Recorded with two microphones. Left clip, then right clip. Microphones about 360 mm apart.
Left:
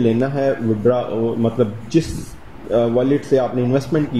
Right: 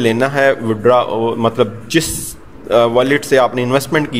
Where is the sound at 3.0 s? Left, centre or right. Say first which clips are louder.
Right 5 dB; right.